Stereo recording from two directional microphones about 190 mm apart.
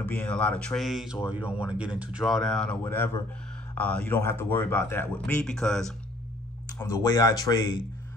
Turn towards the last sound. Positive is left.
turn(degrees=20)  # may be behind; listen again after turning